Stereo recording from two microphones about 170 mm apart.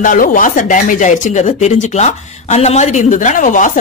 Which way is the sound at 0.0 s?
50° left (ahead or behind).